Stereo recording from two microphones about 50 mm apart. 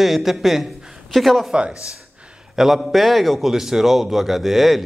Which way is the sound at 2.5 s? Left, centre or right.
Centre.